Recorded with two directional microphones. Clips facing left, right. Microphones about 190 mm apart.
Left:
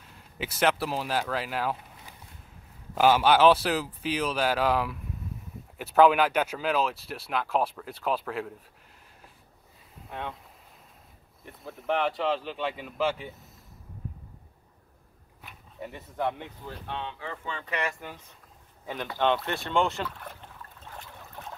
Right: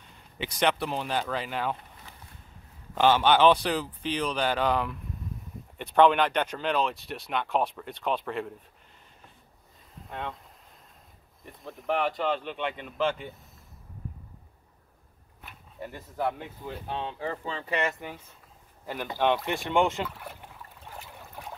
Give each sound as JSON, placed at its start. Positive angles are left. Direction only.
{"t": 0.0, "sound": "speech", "side_deg": 5}
{"t": 10.0, "sound": "speech", "side_deg": 5}
{"t": 11.4, "sound": "speech", "side_deg": 0}
{"t": 15.4, "sound": "speech", "side_deg": 0}
{"t": 16.9, "sound": "speech", "side_deg": -40}
{"t": 18.0, "sound": "speech", "side_deg": -10}
{"t": 21.4, "sound": "trickle", "side_deg": -10}